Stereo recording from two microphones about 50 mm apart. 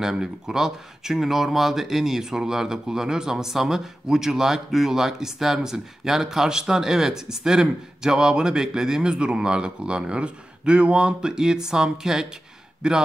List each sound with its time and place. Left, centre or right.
0.0 s speech: centre